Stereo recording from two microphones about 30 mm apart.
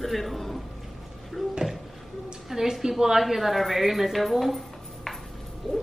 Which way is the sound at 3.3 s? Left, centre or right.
Centre.